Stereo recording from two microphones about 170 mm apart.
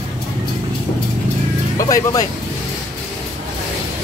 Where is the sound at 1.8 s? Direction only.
20° left (ahead or behind).